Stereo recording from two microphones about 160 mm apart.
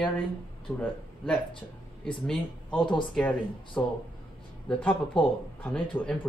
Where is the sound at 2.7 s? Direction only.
30° left (ahead or behind).